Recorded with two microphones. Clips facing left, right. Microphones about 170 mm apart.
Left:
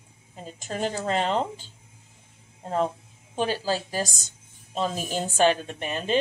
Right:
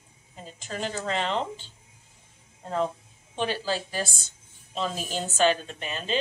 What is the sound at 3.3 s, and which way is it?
A woman's voice, 40° left (ahead or behind).